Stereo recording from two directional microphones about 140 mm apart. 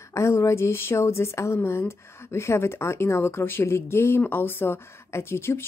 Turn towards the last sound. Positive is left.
turn(degrees=15)  # may be behind; listen again after turning